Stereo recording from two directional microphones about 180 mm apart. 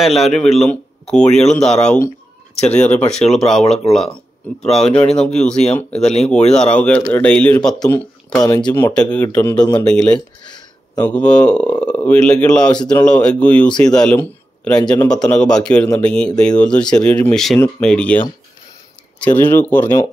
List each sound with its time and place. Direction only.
0.0 s a man's voice: centre (ahead or behind)
8.5 s speech: 25° left (ahead or behind)
8.7 s a man's voice: 15° left (ahead or behind)